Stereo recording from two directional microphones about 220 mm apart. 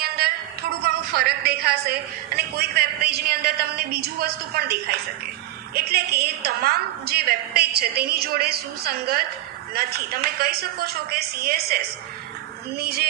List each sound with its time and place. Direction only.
0.8 s a man's voice: 45° right (ahead or behind)